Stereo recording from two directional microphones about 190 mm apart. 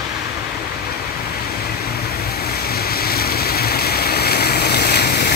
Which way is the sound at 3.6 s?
55° left (ahead or behind).